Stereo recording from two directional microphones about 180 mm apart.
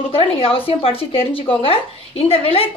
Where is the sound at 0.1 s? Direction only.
30° left (ahead or behind).